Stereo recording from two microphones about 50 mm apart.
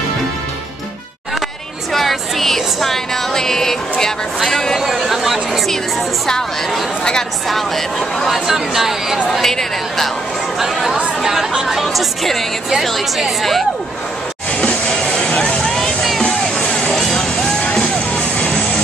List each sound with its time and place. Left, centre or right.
1.9 s music: centre
4.5 s a woman's voice: centre
4.8 s music: centre
6.2 s a woman's voice: centre
7.4 s music: centre
9.3 s music: centre
14.5 s a sound: left
15.0 s vehicle: centre
15.6 s music: centre
16.6 s a sound: left
16.9 s music: centre